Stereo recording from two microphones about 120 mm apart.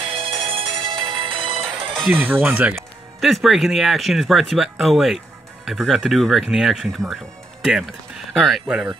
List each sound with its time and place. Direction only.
0.2 s music: 50° right (ahead or behind)
2.0 s speech: 15° right (ahead or behind)
2.7 s speech: centre (ahead or behind)
8.3 s speech: centre (ahead or behind)